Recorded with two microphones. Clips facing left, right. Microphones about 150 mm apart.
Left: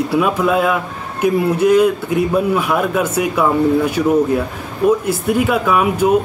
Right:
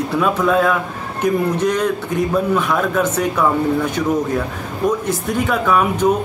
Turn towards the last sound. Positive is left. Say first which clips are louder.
# left 1 dB
turn(degrees=10)  # may be behind; listen again after turning